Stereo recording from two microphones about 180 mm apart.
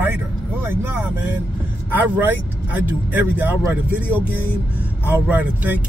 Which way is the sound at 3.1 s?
10° right (ahead or behind).